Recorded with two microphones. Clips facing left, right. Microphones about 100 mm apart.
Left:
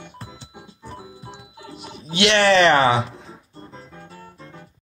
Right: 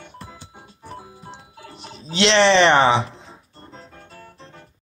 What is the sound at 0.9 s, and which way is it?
Organ, 30° right (ahead or behind).